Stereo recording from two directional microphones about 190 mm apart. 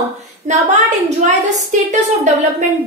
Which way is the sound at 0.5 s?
40° right (ahead or behind).